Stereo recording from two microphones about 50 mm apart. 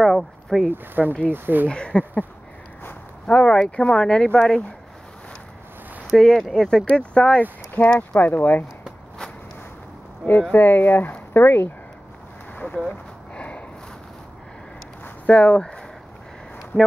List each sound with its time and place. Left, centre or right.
0.1 s speech: centre
0.7 s speech: right
1.7 s speech: centre
3.3 s speech: left
6.1 s speech: centre
6.9 s speech: left
7.7 s speech: left
10.5 s speech: left
12.6 s a sound: left
15.2 s speech: left